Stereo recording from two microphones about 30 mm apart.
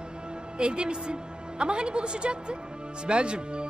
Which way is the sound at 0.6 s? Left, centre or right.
Right.